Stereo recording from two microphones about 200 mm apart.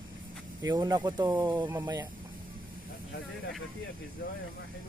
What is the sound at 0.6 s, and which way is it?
Speech, 20° right (ahead or behind).